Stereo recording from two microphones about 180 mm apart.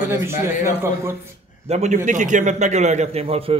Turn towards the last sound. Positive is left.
turn(degrees=-35)  # may be behind; listen again after turning